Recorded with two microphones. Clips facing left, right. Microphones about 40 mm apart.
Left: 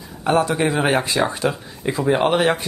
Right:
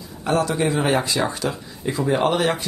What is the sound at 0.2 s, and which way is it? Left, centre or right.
Speech, left.